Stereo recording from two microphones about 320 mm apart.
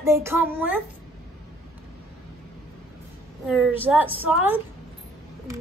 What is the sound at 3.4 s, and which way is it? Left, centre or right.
A woman's voice, centre.